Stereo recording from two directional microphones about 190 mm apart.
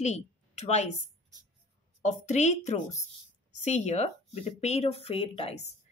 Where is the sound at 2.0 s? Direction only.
40° left (ahead or behind).